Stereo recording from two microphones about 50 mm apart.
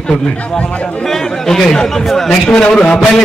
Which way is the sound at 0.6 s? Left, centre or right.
Left.